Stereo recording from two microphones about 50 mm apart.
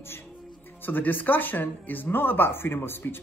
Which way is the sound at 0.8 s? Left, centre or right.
Left.